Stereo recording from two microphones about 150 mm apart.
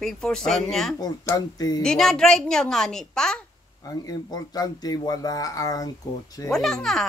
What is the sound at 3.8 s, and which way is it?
Speech, 25° left (ahead or behind).